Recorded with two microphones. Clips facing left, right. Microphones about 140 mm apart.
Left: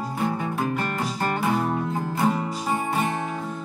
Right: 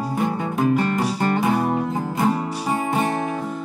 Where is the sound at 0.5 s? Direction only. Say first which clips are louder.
Right 7 dB; 15° right (ahead or behind).